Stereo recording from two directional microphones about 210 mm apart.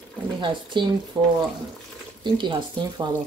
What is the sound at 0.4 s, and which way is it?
Speech, 20° right (ahead or behind).